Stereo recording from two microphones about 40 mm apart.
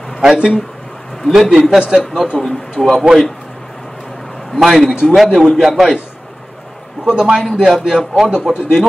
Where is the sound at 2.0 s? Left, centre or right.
Centre.